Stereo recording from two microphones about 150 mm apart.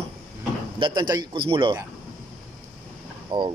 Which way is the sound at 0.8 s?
30° right (ahead or behind).